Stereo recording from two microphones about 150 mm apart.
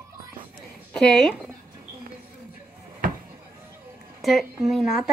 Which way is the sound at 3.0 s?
70° right (ahead or behind).